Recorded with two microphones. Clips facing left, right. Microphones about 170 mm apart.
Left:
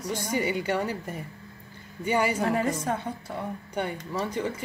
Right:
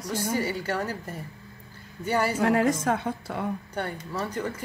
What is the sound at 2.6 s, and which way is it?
Speech, 90° right.